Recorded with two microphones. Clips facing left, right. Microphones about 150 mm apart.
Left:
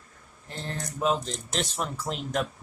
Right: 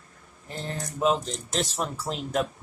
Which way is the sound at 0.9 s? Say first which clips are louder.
Right 2 dB; 5° right (ahead or behind).